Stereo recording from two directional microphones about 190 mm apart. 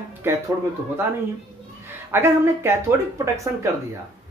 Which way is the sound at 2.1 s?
10° right (ahead or behind).